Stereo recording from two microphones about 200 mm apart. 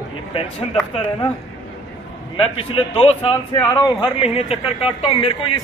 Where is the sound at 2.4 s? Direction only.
25° left (ahead or behind).